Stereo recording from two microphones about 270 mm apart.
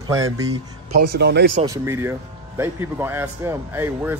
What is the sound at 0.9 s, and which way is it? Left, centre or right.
Speech, right.